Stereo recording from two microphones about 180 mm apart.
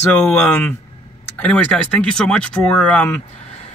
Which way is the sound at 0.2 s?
10° left (ahead or behind).